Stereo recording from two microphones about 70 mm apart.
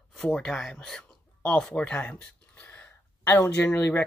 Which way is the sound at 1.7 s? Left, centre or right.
Centre.